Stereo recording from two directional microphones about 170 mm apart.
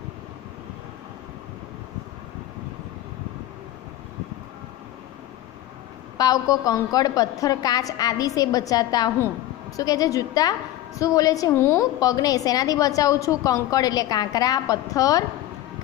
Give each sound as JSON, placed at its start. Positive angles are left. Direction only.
{"t": 6.1, "sound": "a woman's voice", "side_deg": 20}